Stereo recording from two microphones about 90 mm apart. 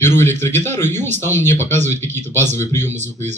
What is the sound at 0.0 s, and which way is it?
A man's voice, 25° left (ahead or behind).